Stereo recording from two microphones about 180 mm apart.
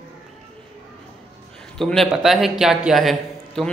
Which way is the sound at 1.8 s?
Centre (ahead or behind).